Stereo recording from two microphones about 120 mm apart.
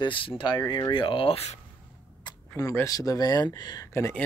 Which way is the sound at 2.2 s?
25° left (ahead or behind).